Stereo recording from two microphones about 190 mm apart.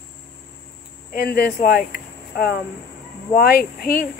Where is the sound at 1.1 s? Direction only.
50° left (ahead or behind).